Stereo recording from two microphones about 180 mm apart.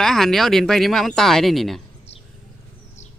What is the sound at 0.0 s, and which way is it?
Speech, centre (ahead or behind).